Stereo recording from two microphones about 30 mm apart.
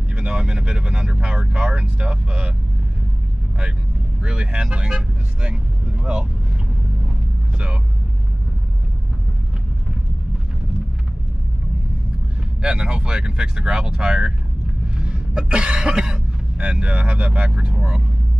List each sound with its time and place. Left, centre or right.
0.1 s speech: right
4.2 s speech: right
7.5 s speech: right
12.6 s speech: right
15.0 s cough: right
15.9 s speech: right
16.5 s speech: right